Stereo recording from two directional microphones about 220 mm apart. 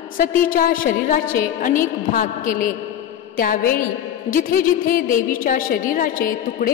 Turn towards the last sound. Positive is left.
turn(degrees=40)  # may be behind; listen again after turning